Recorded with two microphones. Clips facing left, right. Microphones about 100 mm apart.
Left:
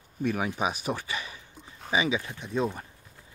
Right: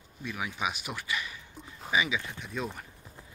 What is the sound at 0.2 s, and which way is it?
Speech, 45° left (ahead or behind).